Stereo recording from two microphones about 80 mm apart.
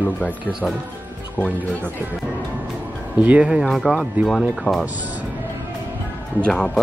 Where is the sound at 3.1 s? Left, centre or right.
Centre.